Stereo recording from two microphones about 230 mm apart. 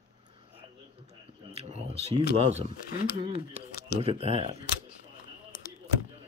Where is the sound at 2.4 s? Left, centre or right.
Right.